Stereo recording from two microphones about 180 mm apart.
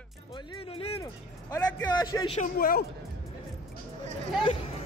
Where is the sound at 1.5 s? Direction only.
20° left (ahead or behind).